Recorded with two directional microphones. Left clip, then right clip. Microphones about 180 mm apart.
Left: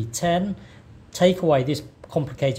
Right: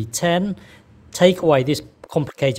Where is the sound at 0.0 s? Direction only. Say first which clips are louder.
Right 3 dB; 35° right (ahead or behind).